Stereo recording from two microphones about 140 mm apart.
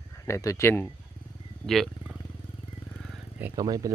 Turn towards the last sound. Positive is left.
turn(degrees=-25)  # may be behind; listen again after turning